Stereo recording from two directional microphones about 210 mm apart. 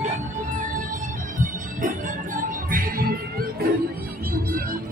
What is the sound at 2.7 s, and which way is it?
Music, 45° right (ahead or behind).